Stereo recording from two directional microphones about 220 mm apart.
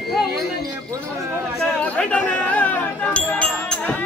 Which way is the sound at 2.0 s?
5° left (ahead or behind).